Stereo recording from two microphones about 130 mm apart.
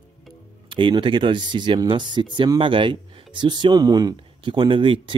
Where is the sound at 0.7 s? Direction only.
40° right (ahead or behind).